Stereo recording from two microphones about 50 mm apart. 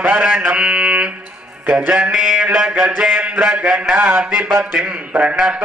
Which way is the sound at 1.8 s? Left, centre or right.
Right.